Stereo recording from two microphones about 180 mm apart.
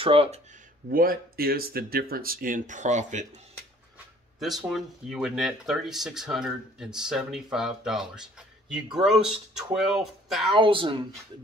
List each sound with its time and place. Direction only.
0.0 s speech: 30° right (ahead or behind)
0.8 s speech: 55° right (ahead or behind)
4.4 s speech: centre (ahead or behind)
10.5 s a woman's voice: 30° right (ahead or behind)